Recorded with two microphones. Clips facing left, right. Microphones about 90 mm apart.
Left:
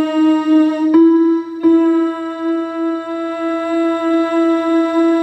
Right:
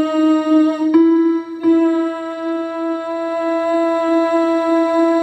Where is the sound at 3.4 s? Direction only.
10° right (ahead or behind).